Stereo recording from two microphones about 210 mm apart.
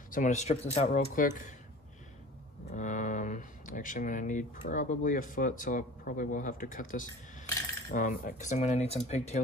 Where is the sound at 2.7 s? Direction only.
35° left (ahead or behind).